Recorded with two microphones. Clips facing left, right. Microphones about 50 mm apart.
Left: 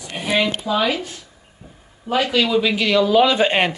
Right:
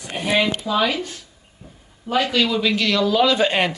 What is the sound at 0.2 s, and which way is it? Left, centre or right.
A man's voice, centre.